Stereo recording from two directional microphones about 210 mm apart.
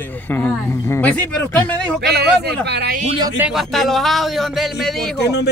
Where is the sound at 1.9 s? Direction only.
50° right (ahead or behind).